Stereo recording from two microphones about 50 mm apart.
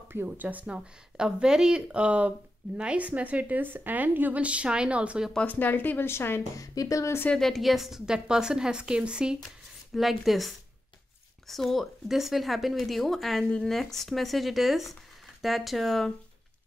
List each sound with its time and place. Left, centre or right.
0.4 s speech: right
0.7 s speech: centre
5.5 s speech: left
6.0 s speech: left
6.5 s a woman's voice: left
7.3 s a woman's voice: centre
9.9 s speech: centre